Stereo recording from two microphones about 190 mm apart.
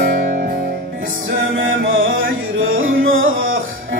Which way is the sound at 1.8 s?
90° right.